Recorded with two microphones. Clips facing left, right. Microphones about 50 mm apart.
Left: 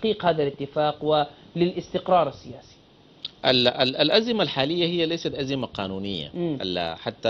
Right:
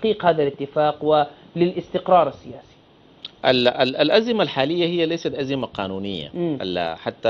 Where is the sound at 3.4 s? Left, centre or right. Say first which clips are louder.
Right 4 dB; centre.